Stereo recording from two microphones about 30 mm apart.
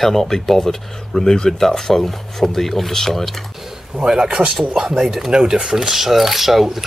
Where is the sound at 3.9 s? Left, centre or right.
Right.